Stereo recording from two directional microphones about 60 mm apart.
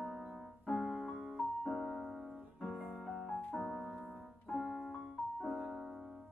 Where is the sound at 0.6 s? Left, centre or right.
Centre.